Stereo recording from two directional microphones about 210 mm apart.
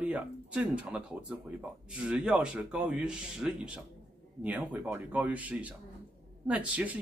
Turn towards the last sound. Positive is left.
turn(degrees=-5)  # may be behind; listen again after turning